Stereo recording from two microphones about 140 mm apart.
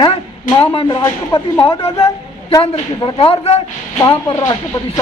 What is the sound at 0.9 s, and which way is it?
Speech, 25° left (ahead or behind).